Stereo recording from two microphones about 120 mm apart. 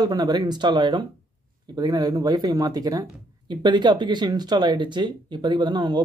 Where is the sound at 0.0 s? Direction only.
35° right (ahead or behind).